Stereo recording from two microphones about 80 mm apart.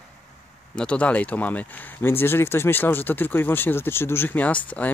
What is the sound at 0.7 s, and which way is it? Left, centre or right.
Speech, centre.